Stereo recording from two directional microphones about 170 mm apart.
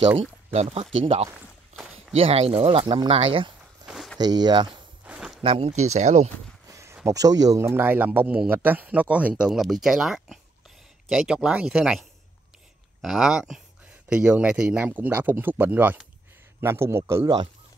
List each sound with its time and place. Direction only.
0.2 s speech: 40° right (ahead or behind)
3.8 s walk: centre (ahead or behind)
4.2 s speech: 25° right (ahead or behind)
4.6 s walk: 5° right (ahead or behind)
5.4 s speech: 35° right (ahead or behind)
6.7 s a sound: 15° right (ahead or behind)
7.1 s speech: 20° right (ahead or behind)